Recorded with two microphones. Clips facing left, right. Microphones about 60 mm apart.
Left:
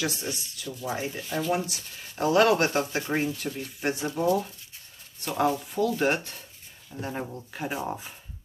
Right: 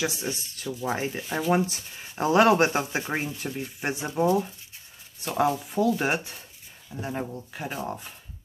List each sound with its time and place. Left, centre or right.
0.0 s speech: centre
6.9 s speech: centre